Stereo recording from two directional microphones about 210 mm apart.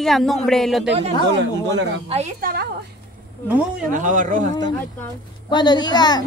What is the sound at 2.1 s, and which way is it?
Speech, 35° right (ahead or behind).